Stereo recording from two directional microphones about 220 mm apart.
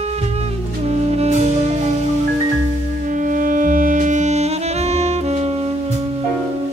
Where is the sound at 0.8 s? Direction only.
30° right (ahead or behind).